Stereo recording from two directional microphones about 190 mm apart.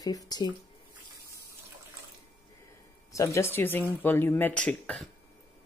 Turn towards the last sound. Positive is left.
turn(degrees=5)  # may be behind; listen again after turning